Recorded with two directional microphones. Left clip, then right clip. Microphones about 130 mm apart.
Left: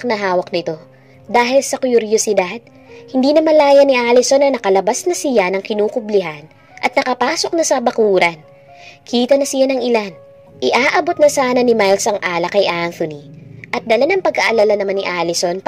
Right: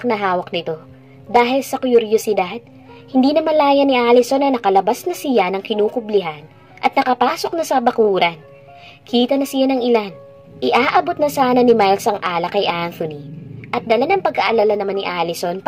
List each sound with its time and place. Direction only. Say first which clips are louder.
0.0 s speech: left 2 dB; 35° left (ahead or behind)